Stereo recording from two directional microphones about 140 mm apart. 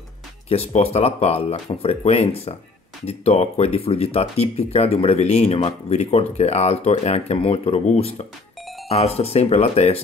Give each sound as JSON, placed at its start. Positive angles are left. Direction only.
{"t": 0.5, "sound": "speech", "side_deg": 45}